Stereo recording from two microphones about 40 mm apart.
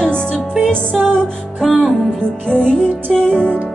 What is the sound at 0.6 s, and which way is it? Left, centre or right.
Music, centre.